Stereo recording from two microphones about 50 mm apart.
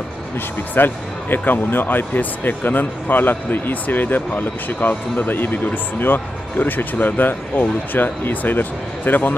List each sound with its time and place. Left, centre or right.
0.7 s speech: left